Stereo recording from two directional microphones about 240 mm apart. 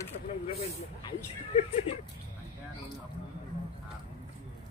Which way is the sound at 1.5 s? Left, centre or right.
Left.